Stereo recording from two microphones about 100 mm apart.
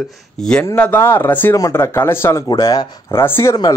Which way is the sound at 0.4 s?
10° left (ahead or behind).